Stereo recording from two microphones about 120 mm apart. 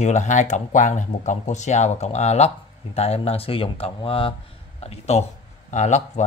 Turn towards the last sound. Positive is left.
turn(degrees=80)